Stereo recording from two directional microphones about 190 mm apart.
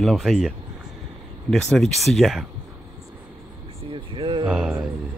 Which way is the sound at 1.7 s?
Centre (ahead or behind).